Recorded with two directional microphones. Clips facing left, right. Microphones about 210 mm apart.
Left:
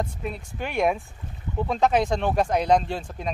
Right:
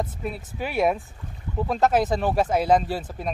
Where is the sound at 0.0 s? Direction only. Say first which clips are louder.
Right 1 dB; 5° right (ahead or behind).